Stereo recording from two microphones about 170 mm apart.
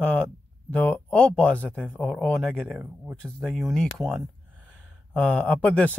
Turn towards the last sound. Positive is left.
turn(degrees=5)  # may be behind; listen again after turning